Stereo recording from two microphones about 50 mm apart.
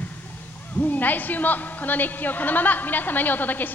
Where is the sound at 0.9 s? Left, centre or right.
Left.